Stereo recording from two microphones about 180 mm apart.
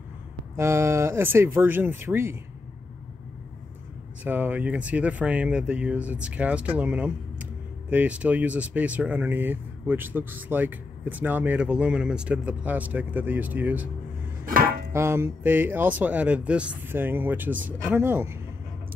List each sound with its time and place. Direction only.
0.6 s speech: 15° right (ahead or behind)
4.2 s speech: 10° right (ahead or behind)
14.5 s music: 50° right (ahead or behind)
14.9 s speech: 15° right (ahead or behind)